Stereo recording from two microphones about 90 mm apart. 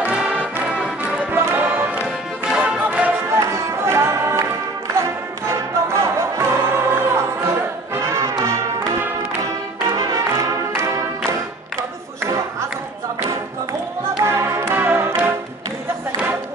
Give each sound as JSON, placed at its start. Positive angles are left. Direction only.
{"t": 0.0, "sound": "music", "side_deg": -10}
{"t": 1.3, "sound": "music", "side_deg": -25}
{"t": 3.3, "sound": "music", "side_deg": -30}
{"t": 5.5, "sound": "music", "side_deg": -30}
{"t": 9.9, "sound": "music", "side_deg": -35}
{"t": 12.2, "sound": "a sound", "side_deg": -30}
{"t": 14.2, "sound": "music", "side_deg": -25}